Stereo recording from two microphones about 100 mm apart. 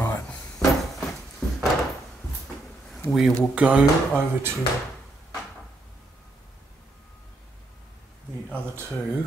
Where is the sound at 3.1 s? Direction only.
Centre (ahead or behind).